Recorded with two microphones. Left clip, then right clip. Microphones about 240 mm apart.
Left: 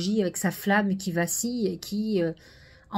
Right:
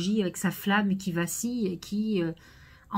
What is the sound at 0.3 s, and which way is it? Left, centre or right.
Speech, centre.